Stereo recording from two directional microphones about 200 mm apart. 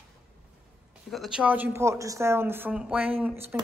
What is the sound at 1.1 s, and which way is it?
Speech, centre (ahead or behind).